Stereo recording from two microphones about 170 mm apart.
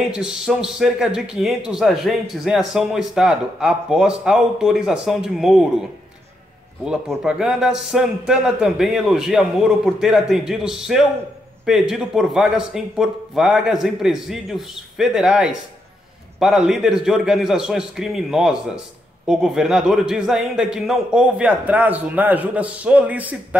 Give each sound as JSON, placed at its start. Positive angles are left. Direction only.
{"t": 0.0, "sound": "a man's voice", "side_deg": -5}
{"t": 6.8, "sound": "a man's voice", "side_deg": -5}